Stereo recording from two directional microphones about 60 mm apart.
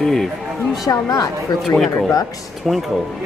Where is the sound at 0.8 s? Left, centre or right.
Left.